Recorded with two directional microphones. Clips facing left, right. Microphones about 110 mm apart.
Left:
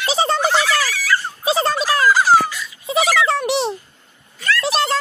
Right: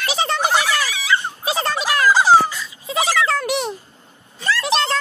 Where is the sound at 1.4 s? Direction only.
30° left (ahead or behind).